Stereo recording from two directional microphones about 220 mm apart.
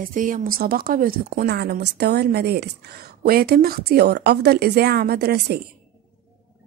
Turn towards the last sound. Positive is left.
turn(degrees=-45)  # may be behind; listen again after turning